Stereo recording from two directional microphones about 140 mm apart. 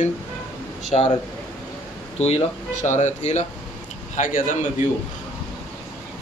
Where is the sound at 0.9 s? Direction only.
50° left (ahead or behind).